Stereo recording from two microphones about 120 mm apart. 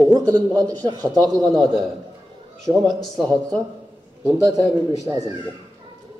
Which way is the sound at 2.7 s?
35° right (ahead or behind).